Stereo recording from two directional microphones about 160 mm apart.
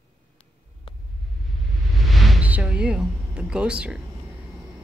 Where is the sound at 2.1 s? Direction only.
Centre (ahead or behind).